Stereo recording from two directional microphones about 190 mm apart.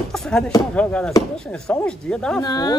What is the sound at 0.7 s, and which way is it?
Speech, 5° left (ahead or behind).